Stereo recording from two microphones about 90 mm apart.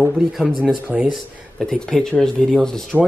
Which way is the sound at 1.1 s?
5° left (ahead or behind).